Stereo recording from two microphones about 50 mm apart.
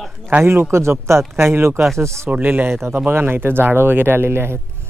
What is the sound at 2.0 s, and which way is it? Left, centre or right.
Speech, right.